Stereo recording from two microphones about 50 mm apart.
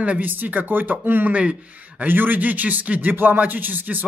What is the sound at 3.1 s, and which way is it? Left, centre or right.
Speech, right.